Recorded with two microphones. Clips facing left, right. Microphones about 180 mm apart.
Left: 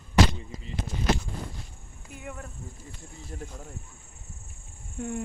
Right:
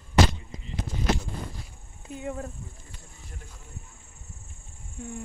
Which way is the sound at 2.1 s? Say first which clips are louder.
Right 7 dB; 25° right (ahead or behind).